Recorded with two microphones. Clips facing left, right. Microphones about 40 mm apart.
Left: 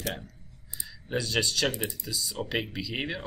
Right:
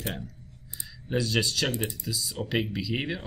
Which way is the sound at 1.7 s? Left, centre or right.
Right.